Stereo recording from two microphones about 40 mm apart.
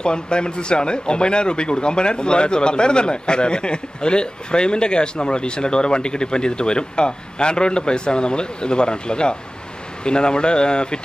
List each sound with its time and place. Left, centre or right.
0.0 s speech: left